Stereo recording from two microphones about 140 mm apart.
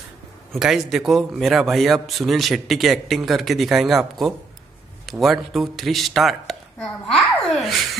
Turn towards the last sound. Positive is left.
turn(degrees=0)  # may be behind; listen again after turning